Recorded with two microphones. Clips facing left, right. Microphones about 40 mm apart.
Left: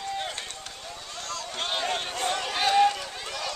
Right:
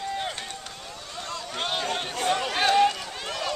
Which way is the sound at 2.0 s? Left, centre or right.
Centre.